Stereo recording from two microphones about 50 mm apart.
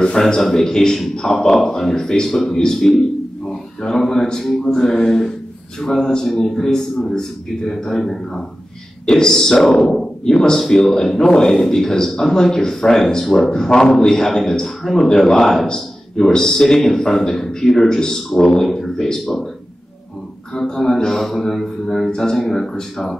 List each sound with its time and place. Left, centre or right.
0.0 s speech: centre
18.7 s speech: centre
20.5 s speech: centre